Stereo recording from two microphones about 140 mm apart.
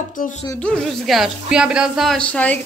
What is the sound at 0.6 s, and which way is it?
A woman's voice, 5° left (ahead or behind).